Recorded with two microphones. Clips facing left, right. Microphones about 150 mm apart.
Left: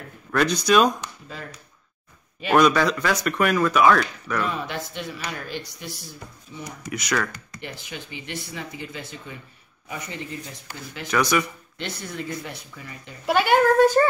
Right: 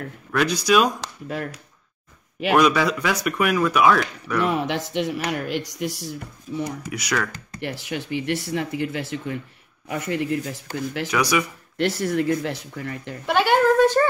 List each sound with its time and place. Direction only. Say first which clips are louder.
0.3 s speech: even; 5° right (ahead or behind)
1.0 s speech: right 7 dB; 80° right
2.5 s speech: even; 5° right (ahead or behind)
4.5 s speech: right 6 dB; 70° right (ahead or behind)
6.9 s speech: left 4 dB; 5° right (ahead or behind)
7.6 s speech: right 8 dB; 70° right (ahead or behind)
11.1 s speech: left 1 dB; 10° right (ahead or behind)
11.7 s speech: right 12 dB; 80° right
13.3 s speech: even; 5° left (ahead or behind)